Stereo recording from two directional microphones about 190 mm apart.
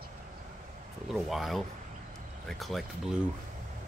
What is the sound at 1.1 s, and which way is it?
Speech, centre (ahead or behind).